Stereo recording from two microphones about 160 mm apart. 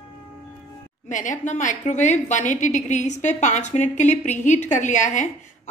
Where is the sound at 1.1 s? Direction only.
50° left (ahead or behind).